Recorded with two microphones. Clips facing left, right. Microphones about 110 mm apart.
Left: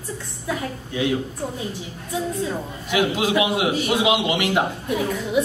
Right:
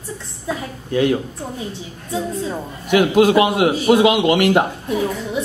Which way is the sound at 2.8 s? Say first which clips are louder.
Right 8 dB; 55° right (ahead or behind).